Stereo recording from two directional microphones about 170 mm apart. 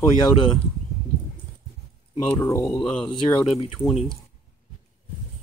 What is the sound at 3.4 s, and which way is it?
Speech, centre (ahead or behind).